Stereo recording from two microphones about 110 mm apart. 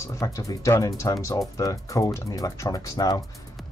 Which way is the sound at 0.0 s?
30° left (ahead or behind).